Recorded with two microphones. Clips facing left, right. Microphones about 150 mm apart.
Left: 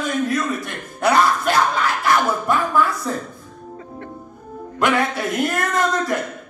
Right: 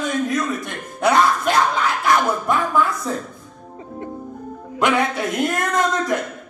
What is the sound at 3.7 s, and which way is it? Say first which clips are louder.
Music: right 5 dB; 15° right (ahead or behind).